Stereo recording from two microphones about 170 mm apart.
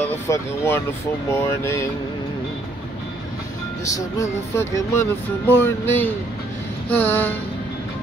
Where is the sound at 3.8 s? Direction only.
20° left (ahead or behind).